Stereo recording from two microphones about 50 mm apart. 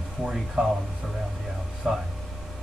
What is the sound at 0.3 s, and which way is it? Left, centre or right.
Speech, centre.